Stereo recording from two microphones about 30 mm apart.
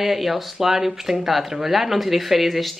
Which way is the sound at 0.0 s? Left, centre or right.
Centre.